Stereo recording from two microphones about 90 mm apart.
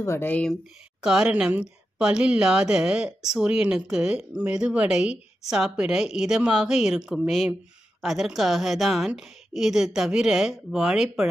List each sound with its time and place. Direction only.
0.0 s speech: 25° left (ahead or behind)
1.0 s a woman's voice: 10° right (ahead or behind)